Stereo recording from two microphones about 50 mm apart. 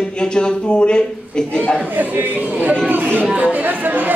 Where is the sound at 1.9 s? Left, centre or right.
Right.